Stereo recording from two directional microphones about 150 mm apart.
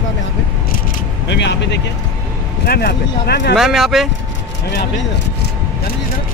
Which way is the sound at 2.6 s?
90° left.